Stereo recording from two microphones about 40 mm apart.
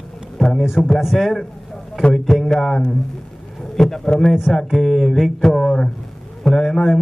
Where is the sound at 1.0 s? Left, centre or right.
Centre.